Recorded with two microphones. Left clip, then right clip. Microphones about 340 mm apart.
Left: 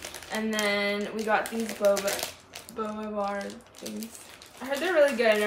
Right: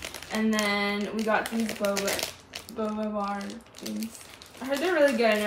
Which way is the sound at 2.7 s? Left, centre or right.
Centre.